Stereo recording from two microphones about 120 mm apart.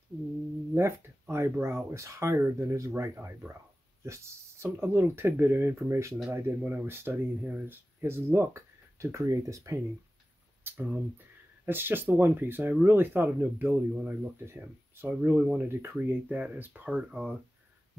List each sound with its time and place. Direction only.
0.7 s speech: 20° right (ahead or behind)
10.6 s speech: 15° right (ahead or behind)